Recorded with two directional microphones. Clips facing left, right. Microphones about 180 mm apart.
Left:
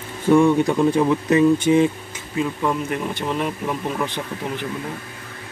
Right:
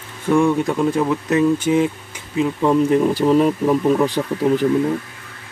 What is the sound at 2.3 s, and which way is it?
Speech, 30° right (ahead or behind).